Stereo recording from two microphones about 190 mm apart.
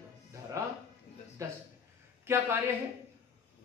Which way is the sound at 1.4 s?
15° right (ahead or behind).